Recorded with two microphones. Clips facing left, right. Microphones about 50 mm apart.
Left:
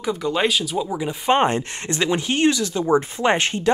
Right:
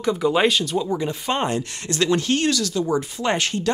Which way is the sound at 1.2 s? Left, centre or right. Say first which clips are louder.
Left 5 dB; left.